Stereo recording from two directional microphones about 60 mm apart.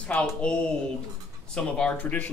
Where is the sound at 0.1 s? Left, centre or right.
Centre.